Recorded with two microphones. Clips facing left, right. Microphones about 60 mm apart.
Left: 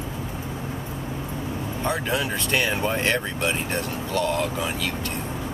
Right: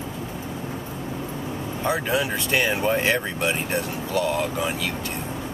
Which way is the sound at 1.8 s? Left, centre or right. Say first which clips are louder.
Right 2 dB; centre.